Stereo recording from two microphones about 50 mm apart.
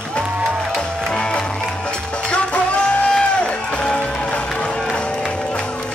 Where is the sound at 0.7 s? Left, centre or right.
Centre.